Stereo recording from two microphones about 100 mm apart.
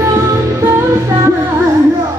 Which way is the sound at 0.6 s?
30° right (ahead or behind).